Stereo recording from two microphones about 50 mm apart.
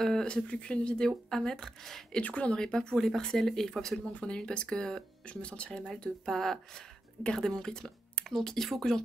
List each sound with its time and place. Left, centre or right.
0.0 s speech: centre
0.5 s speech: left; by 2.0 s centre
2.1 s speech: left
5.2 s speech: left
6.2 s speech: centre